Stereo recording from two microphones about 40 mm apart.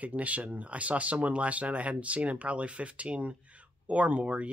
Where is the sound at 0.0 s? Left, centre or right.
Right.